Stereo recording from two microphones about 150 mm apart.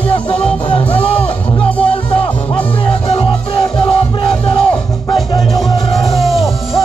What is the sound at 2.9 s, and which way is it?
Music, 35° left (ahead or behind).